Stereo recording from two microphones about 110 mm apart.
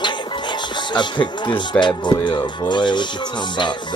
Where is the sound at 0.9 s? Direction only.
45° left (ahead or behind).